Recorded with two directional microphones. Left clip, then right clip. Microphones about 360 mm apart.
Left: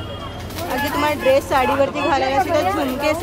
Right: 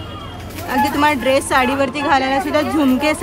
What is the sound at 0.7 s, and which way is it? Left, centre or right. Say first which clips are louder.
Speech: right 5 dB; right.